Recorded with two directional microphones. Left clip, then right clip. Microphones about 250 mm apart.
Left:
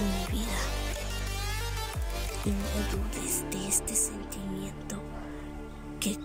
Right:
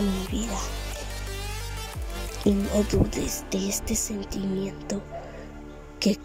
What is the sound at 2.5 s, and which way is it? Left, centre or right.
Speech, right.